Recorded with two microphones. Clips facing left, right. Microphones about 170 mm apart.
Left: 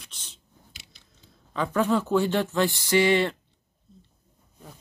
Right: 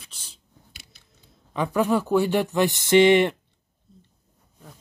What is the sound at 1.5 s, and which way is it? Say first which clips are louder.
Speech: right 2 dB; 15° right (ahead or behind).